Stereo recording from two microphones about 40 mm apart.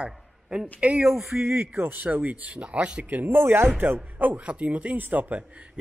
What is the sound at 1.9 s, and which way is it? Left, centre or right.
Speech, right.